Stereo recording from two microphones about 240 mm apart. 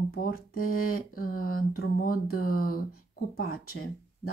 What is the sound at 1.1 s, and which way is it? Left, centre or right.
Speech, left.